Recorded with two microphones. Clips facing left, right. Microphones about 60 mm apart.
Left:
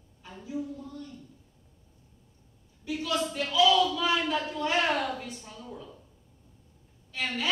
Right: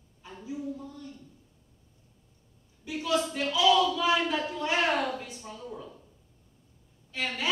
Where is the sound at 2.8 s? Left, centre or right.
Centre.